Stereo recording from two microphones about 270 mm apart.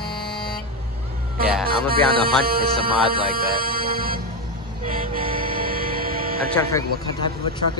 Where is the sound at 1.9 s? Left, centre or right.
Right.